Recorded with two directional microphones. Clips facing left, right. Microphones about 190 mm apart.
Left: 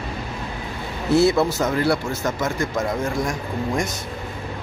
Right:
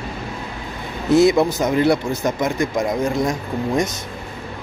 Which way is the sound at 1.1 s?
15° right (ahead or behind).